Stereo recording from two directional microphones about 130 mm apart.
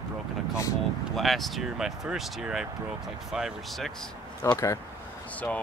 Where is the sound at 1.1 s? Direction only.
Centre (ahead or behind).